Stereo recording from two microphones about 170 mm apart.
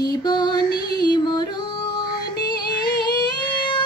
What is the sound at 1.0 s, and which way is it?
Yodeling, 25° left (ahead or behind).